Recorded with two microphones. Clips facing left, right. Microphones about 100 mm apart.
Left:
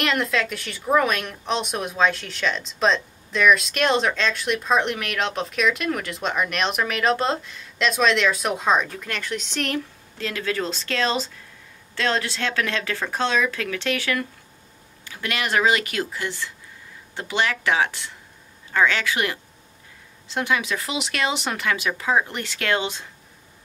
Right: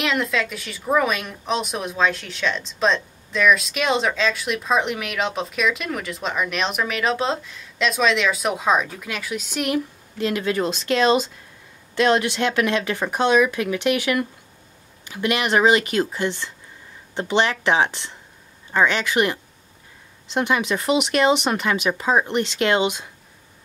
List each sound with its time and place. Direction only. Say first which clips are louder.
0.0 s a woman's voice: even; centre (ahead or behind); by 23.0 s 15° right (ahead or behind)